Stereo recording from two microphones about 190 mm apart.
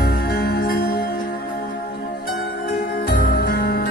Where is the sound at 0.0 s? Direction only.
55° left (ahead or behind).